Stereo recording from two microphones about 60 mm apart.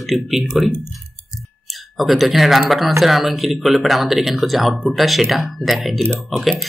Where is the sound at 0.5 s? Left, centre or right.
Centre.